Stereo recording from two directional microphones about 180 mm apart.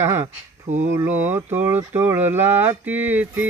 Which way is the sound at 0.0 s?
15° right (ahead or behind).